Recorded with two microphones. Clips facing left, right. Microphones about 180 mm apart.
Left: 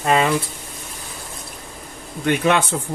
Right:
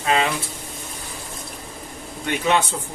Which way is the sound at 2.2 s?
55° left (ahead or behind).